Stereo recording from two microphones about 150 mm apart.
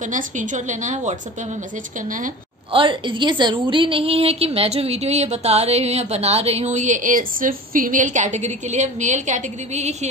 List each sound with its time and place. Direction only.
0.1 s a woman's voice: 55° right (ahead or behind)
2.7 s a woman's voice: 35° right (ahead or behind); by 9.9 s 50° right (ahead or behind)